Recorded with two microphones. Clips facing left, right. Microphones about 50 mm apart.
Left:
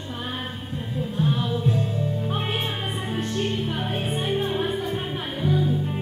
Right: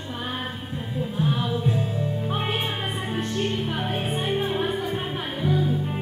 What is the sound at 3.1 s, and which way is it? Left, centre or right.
Music, centre.